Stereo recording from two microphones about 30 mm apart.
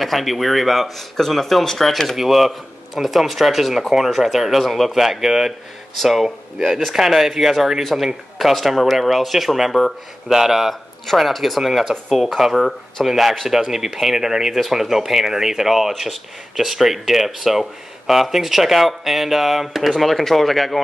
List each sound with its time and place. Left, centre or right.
0.0 s speech: centre
2.1 s speech: centre
12.5 s speech: centre
13.0 s speech: centre
13.5 s speech: centre